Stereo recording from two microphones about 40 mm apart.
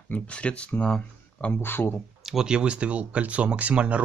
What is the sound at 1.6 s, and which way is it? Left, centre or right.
Speech, left.